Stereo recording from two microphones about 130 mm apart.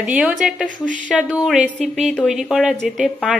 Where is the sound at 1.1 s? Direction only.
5° right (ahead or behind).